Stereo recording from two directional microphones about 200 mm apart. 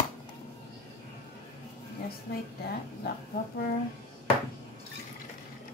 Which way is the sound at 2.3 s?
50° left (ahead or behind).